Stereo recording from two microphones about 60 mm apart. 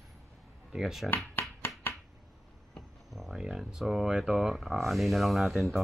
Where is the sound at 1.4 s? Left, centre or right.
Left.